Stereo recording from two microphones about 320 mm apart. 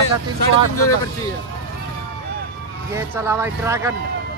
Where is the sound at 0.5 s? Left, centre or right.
Left.